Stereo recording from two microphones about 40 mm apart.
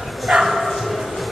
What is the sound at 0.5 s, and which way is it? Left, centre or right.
Bow-wow, centre.